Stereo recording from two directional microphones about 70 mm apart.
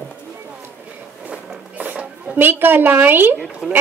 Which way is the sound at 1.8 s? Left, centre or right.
Right.